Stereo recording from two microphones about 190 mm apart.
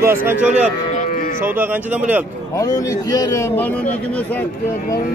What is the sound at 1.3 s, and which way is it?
Speech, 10° right (ahead or behind).